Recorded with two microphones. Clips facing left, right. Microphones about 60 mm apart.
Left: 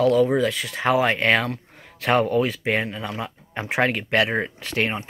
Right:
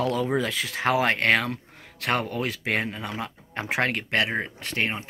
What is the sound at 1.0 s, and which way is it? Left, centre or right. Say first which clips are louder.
Speech: left 2 dB; centre.